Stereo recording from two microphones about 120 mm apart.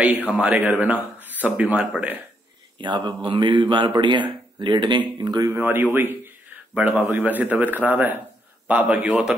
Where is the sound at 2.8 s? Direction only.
40° right (ahead or behind).